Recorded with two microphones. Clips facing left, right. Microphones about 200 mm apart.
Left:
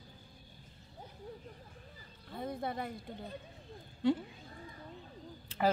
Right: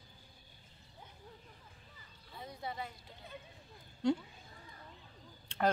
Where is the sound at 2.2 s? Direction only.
55° left (ahead or behind).